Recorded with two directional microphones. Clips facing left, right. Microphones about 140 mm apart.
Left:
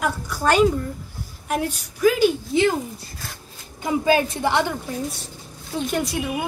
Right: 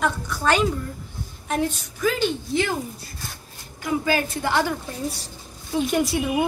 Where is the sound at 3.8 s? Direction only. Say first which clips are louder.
Left 4 dB; 25° left (ahead or behind).